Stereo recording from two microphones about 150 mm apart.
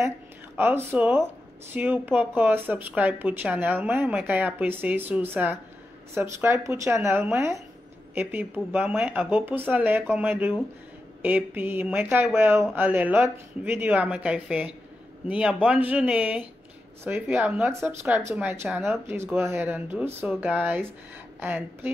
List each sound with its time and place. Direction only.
0.6 s speech: 10° right (ahead or behind)